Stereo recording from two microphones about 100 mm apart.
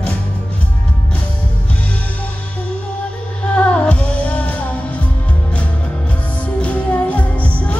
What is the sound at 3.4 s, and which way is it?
Music, 10° left (ahead or behind).